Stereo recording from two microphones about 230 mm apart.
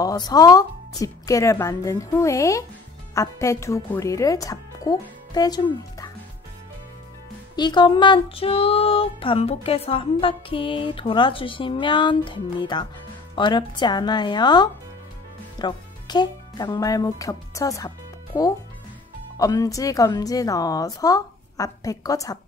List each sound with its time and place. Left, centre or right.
0.0 s a woman's voice: centre
7.5 s music: centre
15.6 s a woman's voice: centre